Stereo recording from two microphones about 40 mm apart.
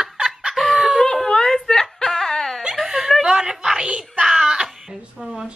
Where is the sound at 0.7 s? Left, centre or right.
Centre.